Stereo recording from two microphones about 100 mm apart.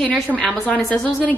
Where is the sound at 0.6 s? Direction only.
15° left (ahead or behind).